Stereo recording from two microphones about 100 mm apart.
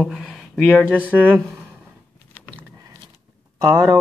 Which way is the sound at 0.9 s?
15° right (ahead or behind).